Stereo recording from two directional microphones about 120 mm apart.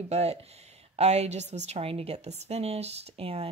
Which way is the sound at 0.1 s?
60° right (ahead or behind).